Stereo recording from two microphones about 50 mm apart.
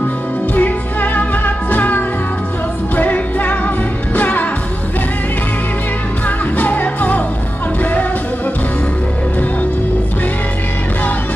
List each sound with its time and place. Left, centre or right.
0.6 s music: left
6.2 s music: left